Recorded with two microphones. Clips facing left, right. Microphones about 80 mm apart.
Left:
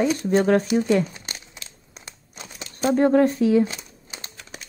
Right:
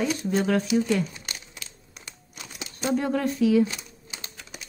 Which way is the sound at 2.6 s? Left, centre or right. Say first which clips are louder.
Left 7 dB; left.